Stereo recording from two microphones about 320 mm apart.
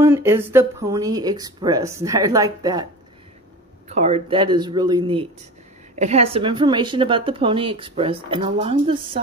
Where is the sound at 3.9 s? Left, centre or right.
Centre.